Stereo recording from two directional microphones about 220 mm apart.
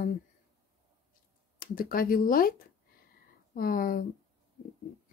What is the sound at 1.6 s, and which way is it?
Speech, 40° left (ahead or behind).